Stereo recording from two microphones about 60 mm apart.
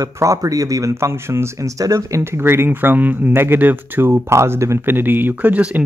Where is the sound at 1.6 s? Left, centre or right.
Right.